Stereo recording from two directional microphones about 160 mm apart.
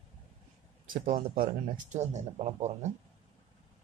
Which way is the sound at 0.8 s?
60° right (ahead or behind).